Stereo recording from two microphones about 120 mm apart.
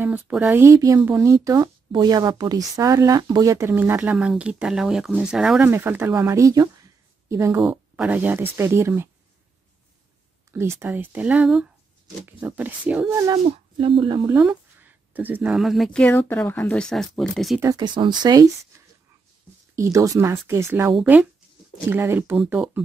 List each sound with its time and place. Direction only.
0.3 s a woman's voice: 15° right (ahead or behind)
5.7 s speech: 20° right (ahead or behind)
6.3 s a sound: 30° right (ahead or behind)
8.0 s a woman's voice: 15° right (ahead or behind)
10.5 s speech: 20° right (ahead or behind)
13.1 s a woman's voice: 25° right (ahead or behind)
13.7 s speech: 45° right (ahead or behind)
14.4 s a sound: 10° right (ahead or behind)
15.5 s speech: centre (ahead or behind)
16.1 s speech: 15° left (ahead or behind); by 17.6 s centre (ahead or behind)
17.7 s speech: 40° right (ahead or behind)
19.7 s a woman's voice: 25° right (ahead or behind)